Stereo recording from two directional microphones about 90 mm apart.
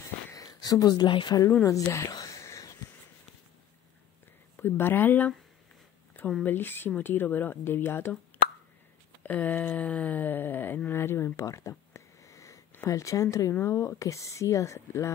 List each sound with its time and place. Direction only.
0.3 s speech: 40° left (ahead or behind); by 1.4 s 60° left (ahead or behind)
1.6 s speech: 35° left (ahead or behind)
2.4 s a sound: 35° left (ahead or behind)
4.6 s speech: 25° left (ahead or behind)
6.4 s speech: 25° left (ahead or behind)
9.2 s a sound: 20° left (ahead or behind); by 12.6 s 35° left (ahead or behind)
12.8 s speech: 35° left (ahead or behind)